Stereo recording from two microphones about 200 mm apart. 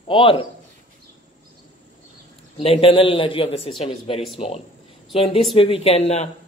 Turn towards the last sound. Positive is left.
turn(degrees=30)  # may be behind; listen again after turning